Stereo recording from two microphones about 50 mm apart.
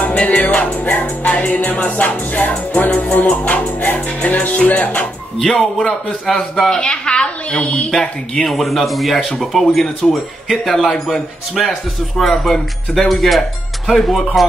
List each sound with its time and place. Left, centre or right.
0.0 s music: left
5.4 s speech: centre
6.7 s a woman's voice: centre
8.5 s speech: centre